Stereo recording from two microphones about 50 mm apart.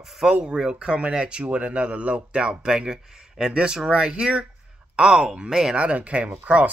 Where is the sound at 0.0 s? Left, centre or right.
Centre.